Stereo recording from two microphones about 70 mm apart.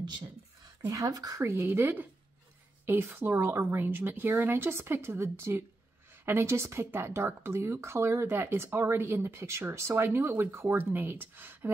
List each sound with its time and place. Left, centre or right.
0.8 s speech: right
1.4 s speech: right